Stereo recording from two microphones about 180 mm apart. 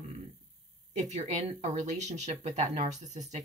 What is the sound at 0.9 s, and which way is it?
A woman's voice, 40° right (ahead or behind).